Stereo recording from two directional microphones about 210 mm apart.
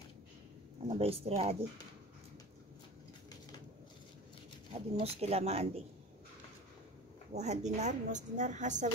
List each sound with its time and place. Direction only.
0.8 s speech: 30° right (ahead or behind)
4.7 s speech: 30° right (ahead or behind)
7.3 s a woman's voice: 35° right (ahead or behind)